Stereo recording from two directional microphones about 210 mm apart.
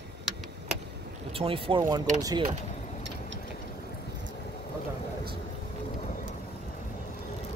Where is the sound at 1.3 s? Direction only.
25° right (ahead or behind).